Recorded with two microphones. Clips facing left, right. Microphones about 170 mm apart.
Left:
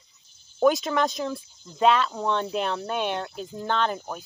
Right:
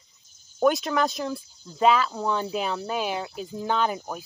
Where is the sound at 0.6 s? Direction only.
Centre (ahead or behind).